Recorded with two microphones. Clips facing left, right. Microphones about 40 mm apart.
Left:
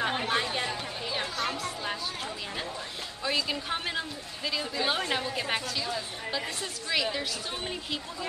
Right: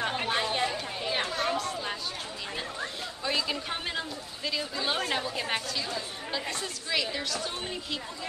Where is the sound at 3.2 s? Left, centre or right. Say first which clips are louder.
Left 1 dB; centre.